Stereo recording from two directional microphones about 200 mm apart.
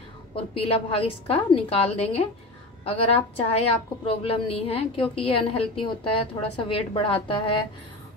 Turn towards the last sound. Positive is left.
turn(degrees=25)  # may be behind; listen again after turning